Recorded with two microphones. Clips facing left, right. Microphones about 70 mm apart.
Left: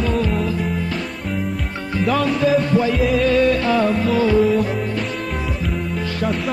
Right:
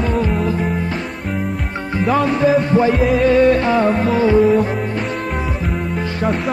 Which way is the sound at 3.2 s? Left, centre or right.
Right.